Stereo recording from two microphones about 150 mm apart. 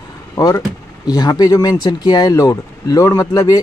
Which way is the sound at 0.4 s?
25° left (ahead or behind).